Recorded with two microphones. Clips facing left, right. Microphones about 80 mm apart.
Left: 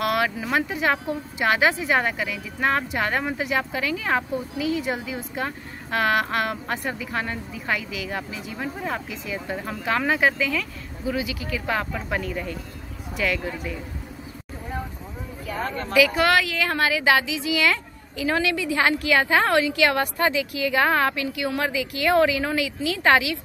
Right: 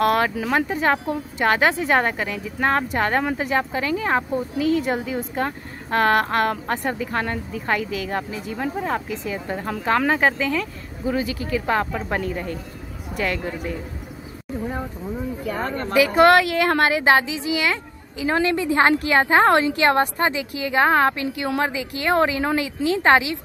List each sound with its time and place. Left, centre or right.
0.0 s a woman's voice: right
4.6 s a woman's voice: right
15.5 s a woman's voice: right
18.4 s a woman's voice: right